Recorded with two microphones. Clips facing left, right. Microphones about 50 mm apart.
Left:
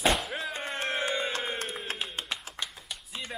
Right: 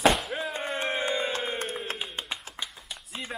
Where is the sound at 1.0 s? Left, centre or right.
Centre.